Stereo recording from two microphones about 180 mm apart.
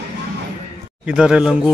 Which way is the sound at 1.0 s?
5° right (ahead or behind).